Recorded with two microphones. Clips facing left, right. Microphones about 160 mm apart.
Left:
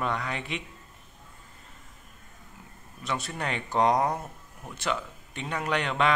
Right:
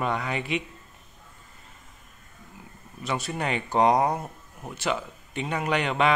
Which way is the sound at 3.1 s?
5° right (ahead or behind).